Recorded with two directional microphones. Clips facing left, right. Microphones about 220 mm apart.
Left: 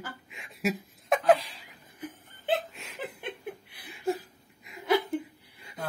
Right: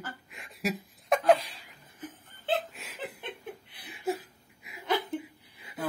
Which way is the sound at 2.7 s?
Centre (ahead or behind).